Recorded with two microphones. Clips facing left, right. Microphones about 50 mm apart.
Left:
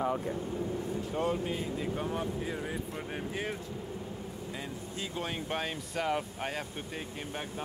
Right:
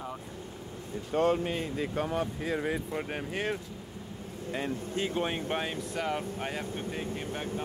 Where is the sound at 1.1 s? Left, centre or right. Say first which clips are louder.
Right 6 dB; right.